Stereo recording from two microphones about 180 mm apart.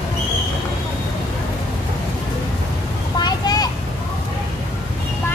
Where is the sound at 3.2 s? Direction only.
20° left (ahead or behind).